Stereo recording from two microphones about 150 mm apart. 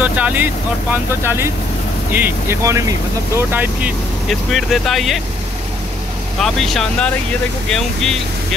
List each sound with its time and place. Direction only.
0.0 s speech: 10° right (ahead or behind)
4.3 s speech: centre (ahead or behind)
6.4 s speech: centre (ahead or behind)